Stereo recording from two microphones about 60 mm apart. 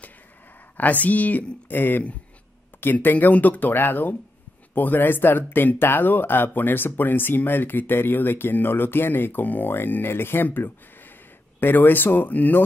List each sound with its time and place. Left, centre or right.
0.7 s speech: left